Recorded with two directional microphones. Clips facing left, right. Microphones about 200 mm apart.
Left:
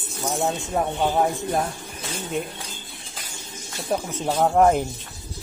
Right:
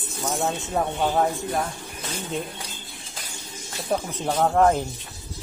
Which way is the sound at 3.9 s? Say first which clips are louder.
Left 1 dB; centre (ahead or behind).